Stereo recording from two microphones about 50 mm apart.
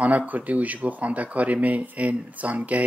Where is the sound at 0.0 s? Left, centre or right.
Right.